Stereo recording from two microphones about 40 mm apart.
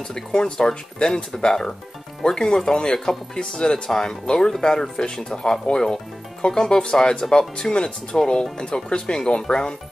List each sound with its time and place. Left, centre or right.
0.1 s speech: centre